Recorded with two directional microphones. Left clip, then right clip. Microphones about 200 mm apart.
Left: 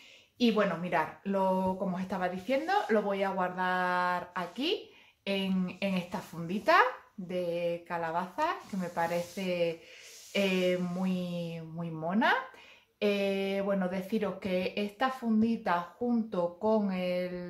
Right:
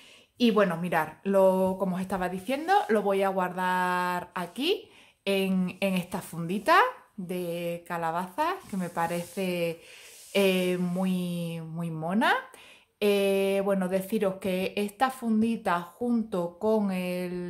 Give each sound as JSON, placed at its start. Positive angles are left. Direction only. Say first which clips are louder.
{"t": 0.4, "sound": "speech", "louder": "right 4 dB", "side_deg": -50}